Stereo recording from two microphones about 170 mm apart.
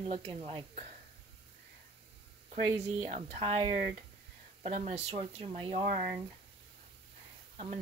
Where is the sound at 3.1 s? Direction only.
40° right (ahead or behind).